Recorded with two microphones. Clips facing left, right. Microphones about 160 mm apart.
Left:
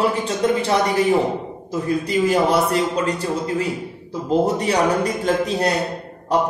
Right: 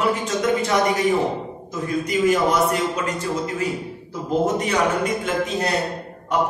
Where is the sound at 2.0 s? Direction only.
30° left (ahead or behind).